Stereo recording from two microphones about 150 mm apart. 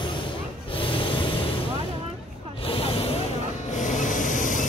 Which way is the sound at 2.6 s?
40° left (ahead or behind).